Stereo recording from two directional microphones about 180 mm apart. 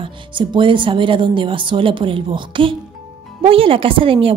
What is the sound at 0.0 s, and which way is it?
A woman's voice, 25° right (ahead or behind).